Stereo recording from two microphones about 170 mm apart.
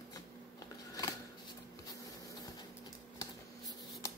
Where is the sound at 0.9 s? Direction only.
20° left (ahead or behind).